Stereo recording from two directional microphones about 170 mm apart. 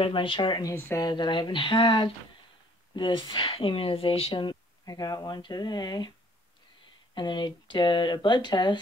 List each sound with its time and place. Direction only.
0.0 s speech: 30° left (ahead or behind)
0.7 s speech: 10° left (ahead or behind)
1.0 s speech: 25° left (ahead or behind)
7.2 s speech: 25° left (ahead or behind)